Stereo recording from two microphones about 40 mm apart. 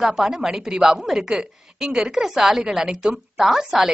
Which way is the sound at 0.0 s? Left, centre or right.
Centre.